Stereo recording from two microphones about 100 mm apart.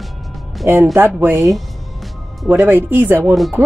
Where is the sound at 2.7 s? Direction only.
20° right (ahead or behind).